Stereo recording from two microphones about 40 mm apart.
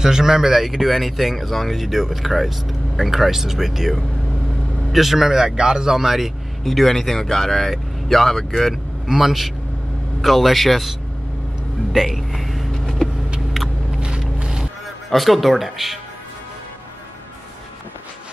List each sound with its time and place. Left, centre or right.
0.0 s speech: centre
5.9 s speech: centre
12.2 s a sound: centre
12.8 s vehicle: centre
13.9 s vehicle: right
15.0 s speech: centre